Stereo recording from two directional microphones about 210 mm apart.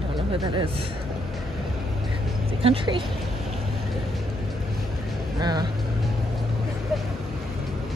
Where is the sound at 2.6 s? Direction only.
25° right (ahead or behind).